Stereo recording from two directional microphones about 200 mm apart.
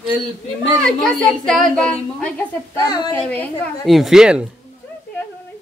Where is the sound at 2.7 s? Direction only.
20° left (ahead or behind).